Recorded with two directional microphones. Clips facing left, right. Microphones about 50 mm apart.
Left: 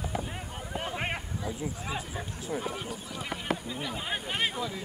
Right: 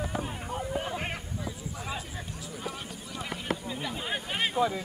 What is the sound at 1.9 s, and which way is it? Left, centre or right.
Speech, centre.